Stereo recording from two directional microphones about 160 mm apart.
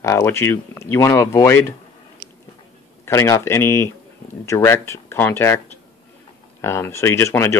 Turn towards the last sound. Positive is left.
turn(degrees=15)  # may be behind; listen again after turning